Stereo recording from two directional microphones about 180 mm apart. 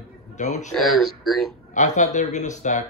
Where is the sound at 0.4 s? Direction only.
40° left (ahead or behind).